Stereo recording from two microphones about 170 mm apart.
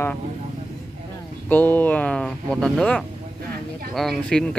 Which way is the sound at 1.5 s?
10° left (ahead or behind).